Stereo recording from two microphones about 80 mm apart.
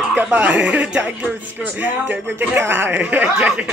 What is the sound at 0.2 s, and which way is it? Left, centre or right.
Speech, centre.